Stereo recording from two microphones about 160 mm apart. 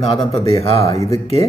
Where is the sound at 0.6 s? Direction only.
40° left (ahead or behind).